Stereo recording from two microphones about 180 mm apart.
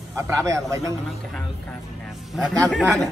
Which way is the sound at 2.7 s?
Centre (ahead or behind).